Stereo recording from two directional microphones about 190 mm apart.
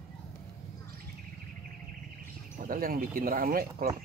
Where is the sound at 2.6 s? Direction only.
50° right (ahead or behind).